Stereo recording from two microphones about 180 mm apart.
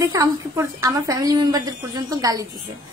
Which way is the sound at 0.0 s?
15° right (ahead or behind).